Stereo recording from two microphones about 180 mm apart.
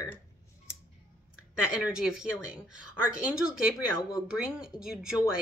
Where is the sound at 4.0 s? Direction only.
20° left (ahead or behind).